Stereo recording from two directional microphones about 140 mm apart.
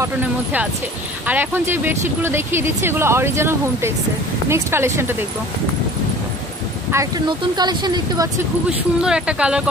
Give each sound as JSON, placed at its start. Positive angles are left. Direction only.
{"t": 0.0, "sound": "speech", "side_deg": -10}
{"t": 7.2, "sound": "speech", "side_deg": -30}
{"t": 8.6, "sound": "speech", "side_deg": -5}